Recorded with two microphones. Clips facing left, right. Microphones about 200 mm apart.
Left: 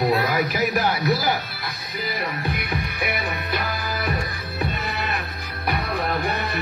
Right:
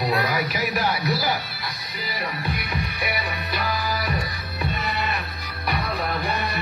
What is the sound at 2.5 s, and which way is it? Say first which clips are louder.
Music: left 1 dB; 50° left (ahead or behind).